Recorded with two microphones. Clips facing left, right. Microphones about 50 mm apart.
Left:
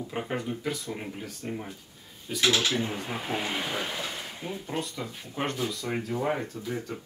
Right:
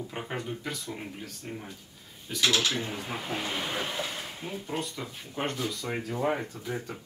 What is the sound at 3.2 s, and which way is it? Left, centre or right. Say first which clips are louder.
Speech: left 2 dB; centre.